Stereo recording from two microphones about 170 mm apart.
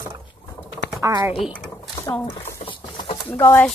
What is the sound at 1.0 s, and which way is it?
Speech, 20° right (ahead or behind).